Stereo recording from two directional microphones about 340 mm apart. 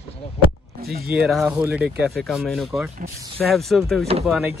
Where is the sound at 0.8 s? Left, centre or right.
Right.